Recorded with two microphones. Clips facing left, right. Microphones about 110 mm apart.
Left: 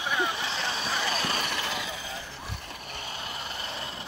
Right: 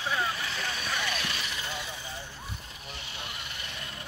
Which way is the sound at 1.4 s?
80° left.